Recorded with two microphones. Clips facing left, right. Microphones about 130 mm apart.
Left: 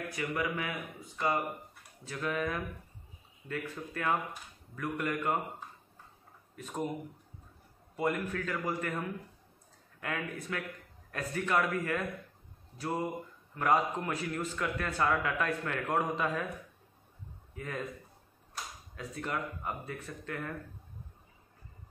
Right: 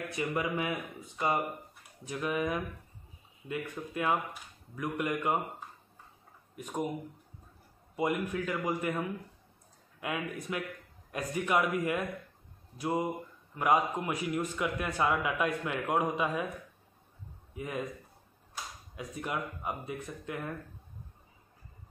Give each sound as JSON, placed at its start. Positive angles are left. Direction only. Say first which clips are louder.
{"t": 0.1, "sound": "a man's voice", "louder": "right 3 dB", "side_deg": -25}
{"t": 6.5, "sound": "a man's voice", "louder": "right 2 dB", "side_deg": -15}
{"t": 7.9, "sound": "a man's voice", "louder": "right 1 dB", "side_deg": -10}
{"t": 17.6, "sound": "a man's voice", "louder": "right 2 dB", "side_deg": -15}
{"t": 18.9, "sound": "a man's voice", "louder": "right 1 dB", "side_deg": -15}